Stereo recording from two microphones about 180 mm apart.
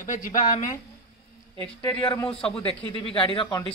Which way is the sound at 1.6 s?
10° left (ahead or behind).